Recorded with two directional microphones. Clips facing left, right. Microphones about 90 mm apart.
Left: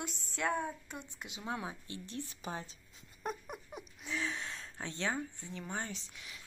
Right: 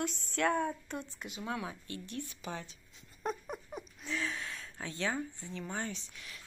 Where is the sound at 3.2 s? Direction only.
10° left (ahead or behind).